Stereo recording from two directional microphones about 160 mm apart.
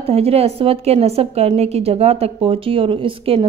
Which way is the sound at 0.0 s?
40° right (ahead or behind).